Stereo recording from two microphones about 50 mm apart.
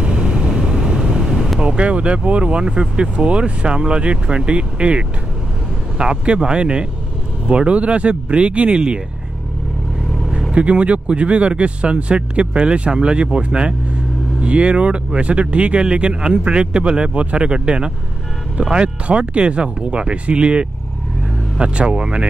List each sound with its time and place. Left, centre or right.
0.0 s vehicle: centre
1.6 s speech: right
10.5 s speech: right